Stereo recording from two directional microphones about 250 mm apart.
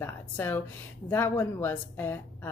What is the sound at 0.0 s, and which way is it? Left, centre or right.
Speech, centre.